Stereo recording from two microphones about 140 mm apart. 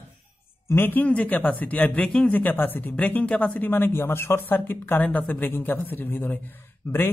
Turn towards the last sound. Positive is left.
turn(degrees=15)  # may be behind; listen again after turning